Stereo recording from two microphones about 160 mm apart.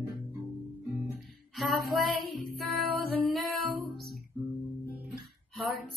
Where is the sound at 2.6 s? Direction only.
Centre (ahead or behind).